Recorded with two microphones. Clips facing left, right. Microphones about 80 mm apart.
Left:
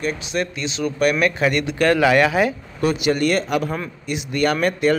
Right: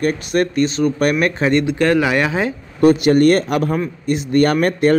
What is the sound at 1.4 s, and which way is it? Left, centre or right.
Speech, right.